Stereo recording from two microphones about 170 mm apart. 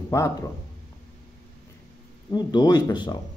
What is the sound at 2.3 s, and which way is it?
Speech, 25° left (ahead or behind).